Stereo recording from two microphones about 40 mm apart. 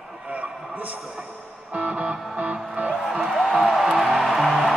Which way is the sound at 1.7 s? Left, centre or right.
Right.